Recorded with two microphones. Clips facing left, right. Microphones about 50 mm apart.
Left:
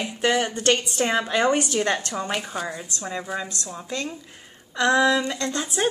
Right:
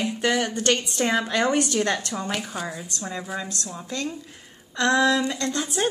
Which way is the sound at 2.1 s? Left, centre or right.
Centre.